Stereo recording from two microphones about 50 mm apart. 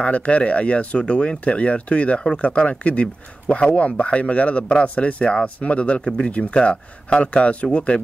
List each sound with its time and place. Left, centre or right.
0.0 s speech: left